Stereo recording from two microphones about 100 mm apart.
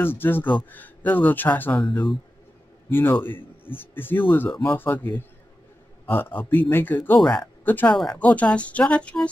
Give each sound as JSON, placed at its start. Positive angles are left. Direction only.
{"t": 0.0, "sound": "speech", "side_deg": 20}
{"t": 2.9, "sound": "a man's voice", "side_deg": 20}
{"t": 4.5, "sound": "speech", "side_deg": 5}
{"t": 4.7, "sound": "speech", "side_deg": 20}
{"t": 7.2, "sound": "speech", "side_deg": 5}
{"t": 7.6, "sound": "speech", "side_deg": 20}
{"t": 7.9, "sound": "speech", "side_deg": 5}
{"t": 8.2, "sound": "speech", "side_deg": 15}